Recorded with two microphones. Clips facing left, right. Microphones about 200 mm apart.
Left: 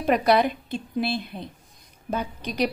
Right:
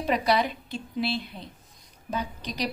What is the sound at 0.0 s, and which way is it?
A woman's voice, 55° left (ahead or behind).